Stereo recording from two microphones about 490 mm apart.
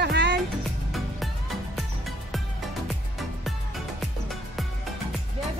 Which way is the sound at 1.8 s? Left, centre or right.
Centre.